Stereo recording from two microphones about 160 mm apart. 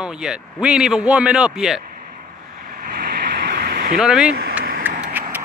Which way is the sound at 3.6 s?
70° right (ahead or behind).